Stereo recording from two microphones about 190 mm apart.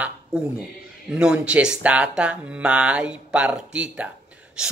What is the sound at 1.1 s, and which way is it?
Speech, 5° right (ahead or behind).